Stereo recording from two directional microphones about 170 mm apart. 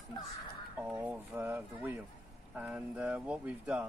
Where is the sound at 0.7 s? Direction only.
10° right (ahead or behind).